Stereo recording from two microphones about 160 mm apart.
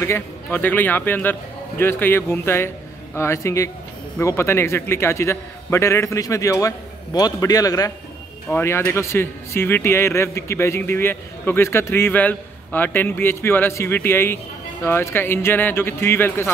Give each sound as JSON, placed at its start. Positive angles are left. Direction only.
{"t": 0.0, "sound": "a man's voice", "side_deg": 15}